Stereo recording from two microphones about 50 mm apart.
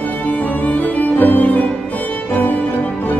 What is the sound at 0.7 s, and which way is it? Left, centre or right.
Music, left.